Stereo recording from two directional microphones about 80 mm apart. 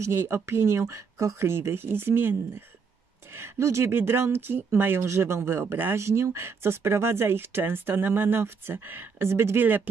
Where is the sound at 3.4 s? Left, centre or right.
Right.